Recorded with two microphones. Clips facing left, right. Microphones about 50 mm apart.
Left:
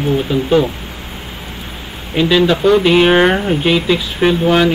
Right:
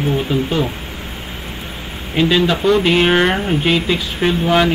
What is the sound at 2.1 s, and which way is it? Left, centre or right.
Speech, centre.